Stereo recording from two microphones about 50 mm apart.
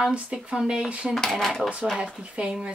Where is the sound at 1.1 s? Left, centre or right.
Centre.